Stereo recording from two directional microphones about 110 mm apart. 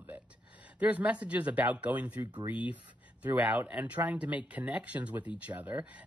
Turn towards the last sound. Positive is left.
turn(degrees=-15)  # may be behind; listen again after turning